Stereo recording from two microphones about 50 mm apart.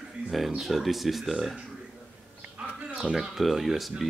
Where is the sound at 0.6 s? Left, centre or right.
Centre.